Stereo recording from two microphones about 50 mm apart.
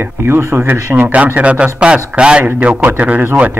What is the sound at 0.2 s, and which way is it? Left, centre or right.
Speech, right.